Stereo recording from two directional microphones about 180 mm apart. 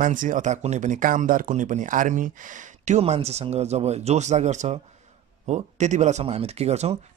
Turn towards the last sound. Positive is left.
turn(degrees=-35)  # may be behind; listen again after turning